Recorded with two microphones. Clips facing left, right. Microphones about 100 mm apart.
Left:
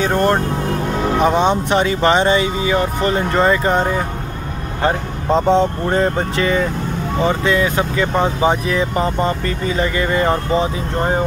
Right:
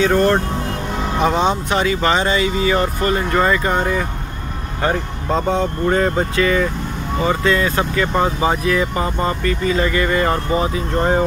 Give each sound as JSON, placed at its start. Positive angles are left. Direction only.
{"t": 0.0, "sound": "speech", "side_deg": 20}